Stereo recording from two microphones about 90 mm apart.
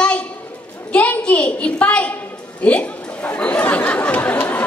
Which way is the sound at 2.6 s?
15° left (ahead or behind).